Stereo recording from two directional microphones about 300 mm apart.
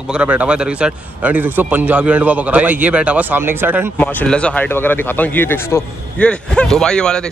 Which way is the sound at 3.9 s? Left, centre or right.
Centre.